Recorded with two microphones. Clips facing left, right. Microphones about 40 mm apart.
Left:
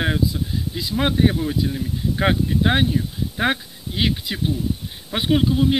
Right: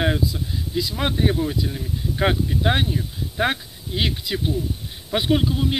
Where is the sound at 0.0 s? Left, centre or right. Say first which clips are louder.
Left 1 dB; centre.